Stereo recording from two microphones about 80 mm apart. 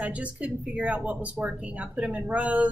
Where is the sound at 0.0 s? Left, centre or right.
Centre.